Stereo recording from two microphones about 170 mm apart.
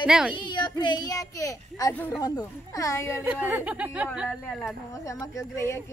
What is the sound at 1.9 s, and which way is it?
Speech, 5° left (ahead or behind).